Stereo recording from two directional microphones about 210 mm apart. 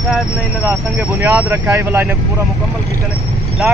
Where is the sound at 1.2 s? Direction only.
10° right (ahead or behind).